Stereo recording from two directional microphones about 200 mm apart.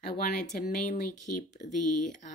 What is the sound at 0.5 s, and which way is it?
A woman's voice, 45° left (ahead or behind).